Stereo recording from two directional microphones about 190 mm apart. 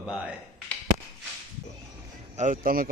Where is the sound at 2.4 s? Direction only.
45° right (ahead or behind).